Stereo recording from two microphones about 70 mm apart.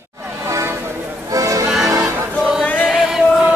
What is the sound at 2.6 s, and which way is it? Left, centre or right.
Choir, centre.